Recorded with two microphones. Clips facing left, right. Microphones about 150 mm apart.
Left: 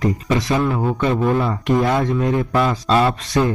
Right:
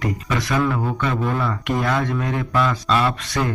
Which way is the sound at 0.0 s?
25° left (ahead or behind).